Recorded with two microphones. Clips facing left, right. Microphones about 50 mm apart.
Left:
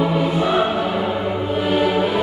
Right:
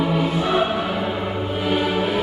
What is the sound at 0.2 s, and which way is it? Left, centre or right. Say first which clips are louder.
Choir: left 2 dB; centre.